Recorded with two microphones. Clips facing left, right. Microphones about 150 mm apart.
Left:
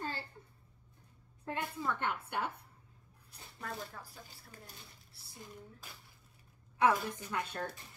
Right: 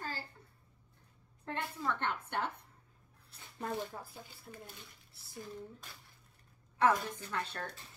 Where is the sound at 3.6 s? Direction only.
25° right (ahead or behind).